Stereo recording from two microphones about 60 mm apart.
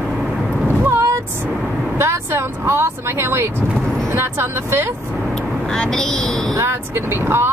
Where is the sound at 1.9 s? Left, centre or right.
Right.